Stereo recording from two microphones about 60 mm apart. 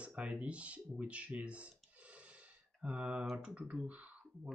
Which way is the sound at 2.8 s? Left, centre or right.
Centre.